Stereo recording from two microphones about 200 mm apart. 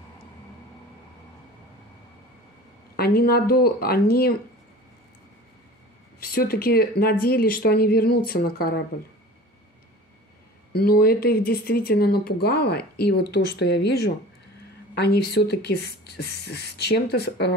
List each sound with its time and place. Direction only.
3.0 s speech: 50° left (ahead or behind)
6.1 s speech: 50° left (ahead or behind)
10.7 s speech: 50° left (ahead or behind)